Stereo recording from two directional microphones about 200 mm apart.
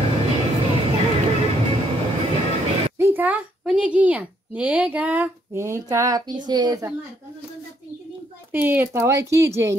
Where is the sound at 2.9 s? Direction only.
10° right (ahead or behind).